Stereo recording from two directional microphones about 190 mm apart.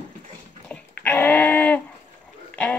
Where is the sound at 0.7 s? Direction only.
10° left (ahead or behind).